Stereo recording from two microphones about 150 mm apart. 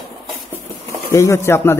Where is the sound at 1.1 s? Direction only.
20° left (ahead or behind).